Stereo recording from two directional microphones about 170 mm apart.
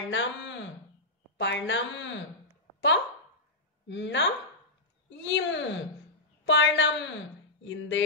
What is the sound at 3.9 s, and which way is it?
A woman's voice, 90° left.